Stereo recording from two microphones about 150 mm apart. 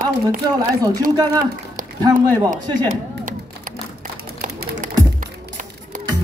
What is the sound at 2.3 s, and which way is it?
Speech, 25° right (ahead or behind).